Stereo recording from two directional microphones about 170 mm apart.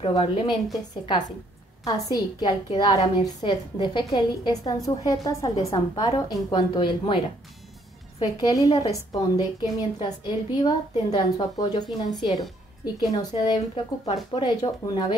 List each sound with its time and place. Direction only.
0.0 s a woman's voice: 30° left (ahead or behind)
1.9 s a woman's voice: 20° left (ahead or behind)
8.2 s a woman's voice: 20° left (ahead or behind)